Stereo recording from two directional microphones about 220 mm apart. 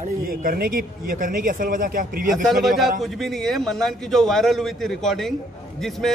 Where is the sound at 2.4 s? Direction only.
Centre (ahead or behind).